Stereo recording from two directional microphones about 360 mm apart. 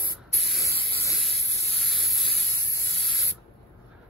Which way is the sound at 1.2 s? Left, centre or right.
Centre.